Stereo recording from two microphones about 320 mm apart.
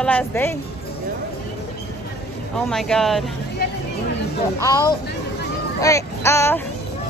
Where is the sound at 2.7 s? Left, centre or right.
Centre.